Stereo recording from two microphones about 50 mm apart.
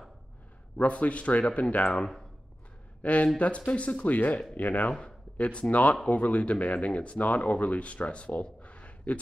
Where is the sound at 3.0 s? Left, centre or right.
Left.